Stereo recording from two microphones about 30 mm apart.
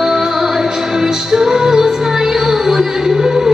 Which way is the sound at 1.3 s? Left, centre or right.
Centre.